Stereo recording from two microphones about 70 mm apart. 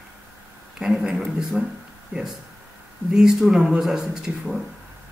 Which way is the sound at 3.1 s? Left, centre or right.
Centre.